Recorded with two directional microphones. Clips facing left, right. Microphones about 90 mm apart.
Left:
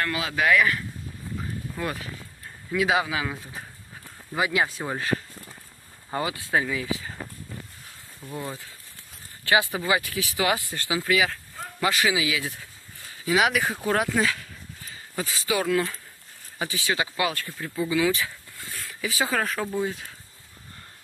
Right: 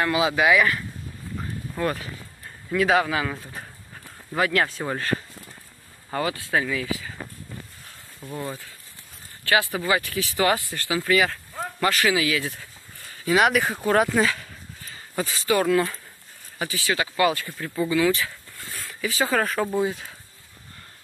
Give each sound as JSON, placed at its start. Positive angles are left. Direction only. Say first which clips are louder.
{"t": 0.0, "sound": "speech", "louder": "right 6 dB", "side_deg": -15}
{"t": 0.4, "sound": "speech", "louder": "left 1 dB", "side_deg": 0}
{"t": 2.7, "sound": "speech", "louder": "right 3 dB", "side_deg": 5}
{"t": 6.1, "sound": "speech", "louder": "right 1 dB", "side_deg": 20}
{"t": 9.4, "sound": "speech", "louder": "even", "side_deg": 20}
{"t": 11.1, "sound": "speech", "louder": "right 2 dB", "side_deg": 5}
{"t": 11.8, "sound": "speech", "louder": "right 2 dB", "side_deg": 15}
{"t": 16.5, "sound": "speech", "louder": "right 1 dB", "side_deg": 20}
{"t": 17.2, "sound": "speech", "louder": "right 5 dB", "side_deg": -5}
{"t": 19.3, "sound": "speech", "louder": "right 4 dB", "side_deg": 0}